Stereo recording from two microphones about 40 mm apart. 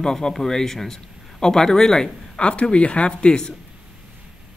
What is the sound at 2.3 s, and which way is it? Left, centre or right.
Speech, left.